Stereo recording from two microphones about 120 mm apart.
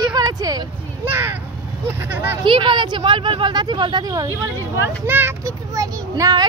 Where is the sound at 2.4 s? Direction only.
40° right (ahead or behind).